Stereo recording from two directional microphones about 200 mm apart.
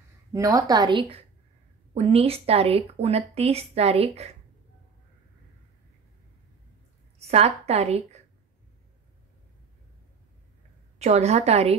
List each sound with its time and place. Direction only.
0.3 s a woman's voice: 15° right (ahead or behind); by 4.3 s 30° right (ahead or behind)
7.2 s a woman's voice: 30° right (ahead or behind)
11.0 s a woman's voice: 35° right (ahead or behind)